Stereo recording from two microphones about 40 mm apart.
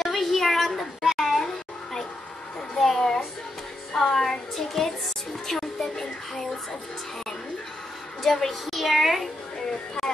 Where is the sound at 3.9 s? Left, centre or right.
Centre.